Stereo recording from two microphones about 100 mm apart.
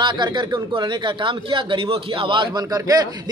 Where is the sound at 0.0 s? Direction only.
50° right (ahead or behind).